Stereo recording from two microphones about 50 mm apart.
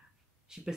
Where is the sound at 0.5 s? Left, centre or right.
Centre.